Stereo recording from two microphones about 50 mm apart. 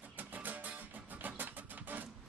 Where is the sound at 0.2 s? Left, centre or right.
Right.